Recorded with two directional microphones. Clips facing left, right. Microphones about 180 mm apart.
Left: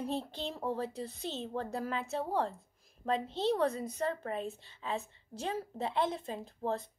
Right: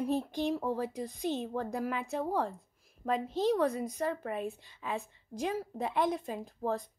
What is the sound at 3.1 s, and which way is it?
Speech, 30° left (ahead or behind).